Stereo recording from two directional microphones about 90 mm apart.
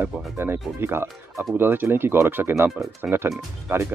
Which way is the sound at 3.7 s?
25° right (ahead or behind).